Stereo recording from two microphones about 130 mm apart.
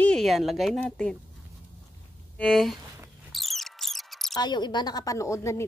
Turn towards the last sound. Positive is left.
turn(degrees=20)  # may be behind; listen again after turning